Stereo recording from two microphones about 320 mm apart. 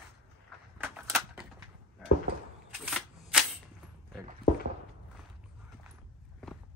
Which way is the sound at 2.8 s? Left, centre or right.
Centre.